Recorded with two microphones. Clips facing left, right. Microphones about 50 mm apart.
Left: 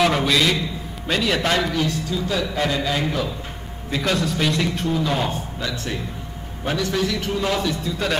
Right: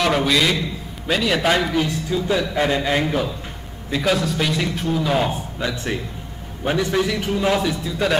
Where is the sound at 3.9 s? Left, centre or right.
Centre.